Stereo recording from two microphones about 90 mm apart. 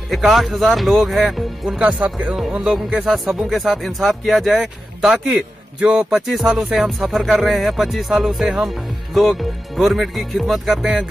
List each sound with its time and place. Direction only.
0.1 s music: centre (ahead or behind)
1.8 s music: 15° right (ahead or behind)
5.8 s speech: 15° right (ahead or behind)
6.0 s music: 5° right (ahead or behind)